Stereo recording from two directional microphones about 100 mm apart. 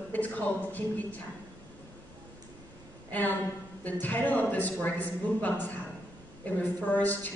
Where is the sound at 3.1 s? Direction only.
15° left (ahead or behind).